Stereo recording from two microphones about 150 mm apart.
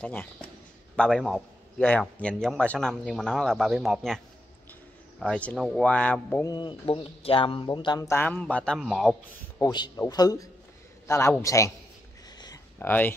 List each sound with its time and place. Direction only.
0.0 s a man's voice: 10° left (ahead or behind)
5.2 s speech: 10° left (ahead or behind)
6.4 s speech: 30° left (ahead or behind)
8.1 s a man's voice: 10° left (ahead or behind)
9.6 s a man's voice: 25° left (ahead or behind)
12.7 s speech: 10° left (ahead or behind)